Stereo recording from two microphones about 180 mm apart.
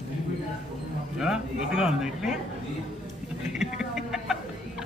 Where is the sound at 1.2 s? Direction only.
5° right (ahead or behind).